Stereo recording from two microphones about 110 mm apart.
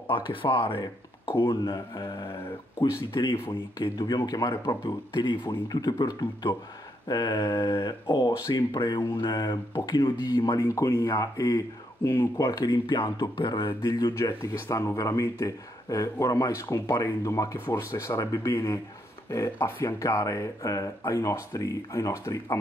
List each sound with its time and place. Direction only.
0.1 s speech: 55° left (ahead or behind); by 2.2 s 35° left (ahead or behind)
3.7 s speech: 40° left (ahead or behind)